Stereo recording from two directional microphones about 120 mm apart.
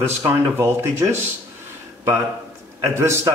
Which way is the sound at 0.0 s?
20° right (ahead or behind).